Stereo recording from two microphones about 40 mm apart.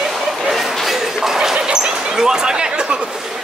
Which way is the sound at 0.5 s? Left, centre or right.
Centre.